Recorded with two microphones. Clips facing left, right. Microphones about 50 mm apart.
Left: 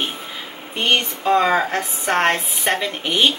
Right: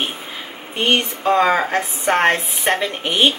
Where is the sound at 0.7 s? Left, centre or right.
Centre.